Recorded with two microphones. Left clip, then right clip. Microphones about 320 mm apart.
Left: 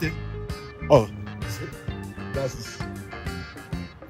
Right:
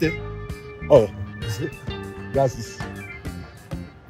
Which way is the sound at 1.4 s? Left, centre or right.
Centre.